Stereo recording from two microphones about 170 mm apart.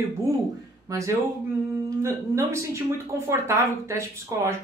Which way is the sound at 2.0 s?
15° right (ahead or behind).